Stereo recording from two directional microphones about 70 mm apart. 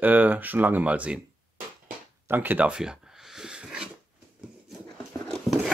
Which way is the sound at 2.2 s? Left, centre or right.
Right.